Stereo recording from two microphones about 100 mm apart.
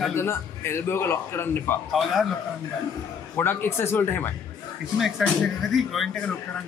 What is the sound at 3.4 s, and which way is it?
Speech, 20° left (ahead or behind).